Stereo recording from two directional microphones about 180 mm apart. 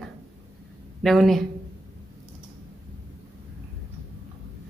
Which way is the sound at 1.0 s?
Centre (ahead or behind).